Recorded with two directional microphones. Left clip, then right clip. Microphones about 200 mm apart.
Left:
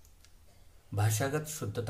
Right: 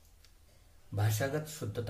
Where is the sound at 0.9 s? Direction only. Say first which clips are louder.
Left 2 dB; 30° left (ahead or behind).